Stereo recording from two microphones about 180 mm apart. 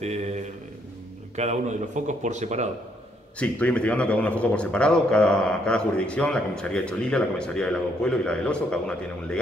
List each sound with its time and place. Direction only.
0.0 s speech: 40° right (ahead or behind)
1.3 s speech: 40° right (ahead or behind)
3.3 s a man's voice: 5° left (ahead or behind)